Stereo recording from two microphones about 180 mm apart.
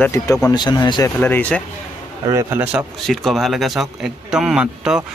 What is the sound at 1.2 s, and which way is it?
Speech, 10° left (ahead or behind).